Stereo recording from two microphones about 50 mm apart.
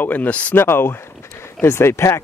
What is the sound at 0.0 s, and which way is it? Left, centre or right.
Speech, left.